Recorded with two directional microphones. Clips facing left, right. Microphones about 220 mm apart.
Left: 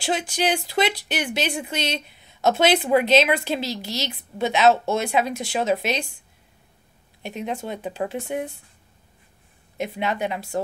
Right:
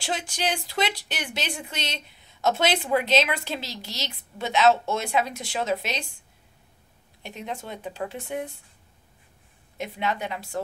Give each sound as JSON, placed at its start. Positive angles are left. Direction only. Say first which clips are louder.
{"t": 0.0, "sound": "speech", "louder": "left 5 dB", "side_deg": 15}
{"t": 7.2, "sound": "speech", "louder": "left 6 dB", "side_deg": 15}
{"t": 9.8, "sound": "speech", "louder": "left 4 dB", "side_deg": 15}